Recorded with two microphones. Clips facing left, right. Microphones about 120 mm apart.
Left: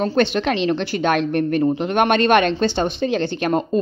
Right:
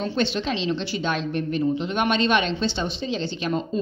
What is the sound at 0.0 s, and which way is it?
A woman's voice, 55° left (ahead or behind).